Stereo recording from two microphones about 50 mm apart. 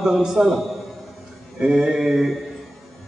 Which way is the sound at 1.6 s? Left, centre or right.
Centre.